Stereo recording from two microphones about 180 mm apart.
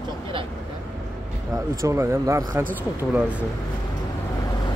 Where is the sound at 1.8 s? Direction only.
15° right (ahead or behind).